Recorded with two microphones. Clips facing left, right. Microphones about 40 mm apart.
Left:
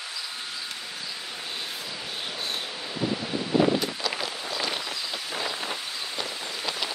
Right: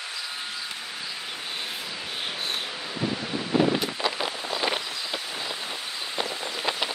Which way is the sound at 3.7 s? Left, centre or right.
Centre.